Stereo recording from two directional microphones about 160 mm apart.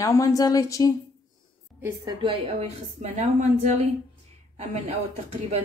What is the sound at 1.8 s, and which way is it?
Speech, 20° right (ahead or behind).